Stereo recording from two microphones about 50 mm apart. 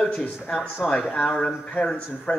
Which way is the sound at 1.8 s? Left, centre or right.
Left.